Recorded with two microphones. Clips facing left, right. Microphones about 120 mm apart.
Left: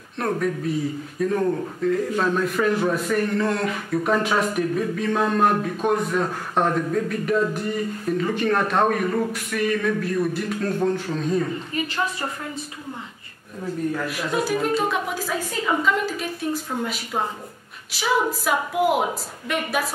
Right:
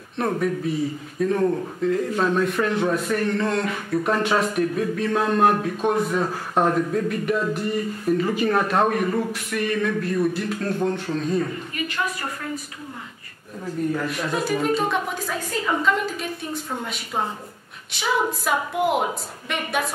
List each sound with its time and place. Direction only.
0.2 s a man's voice: centre (ahead or behind)
11.7 s a woman's voice: 30° left (ahead or behind)
13.9 s a man's voice: centre (ahead or behind)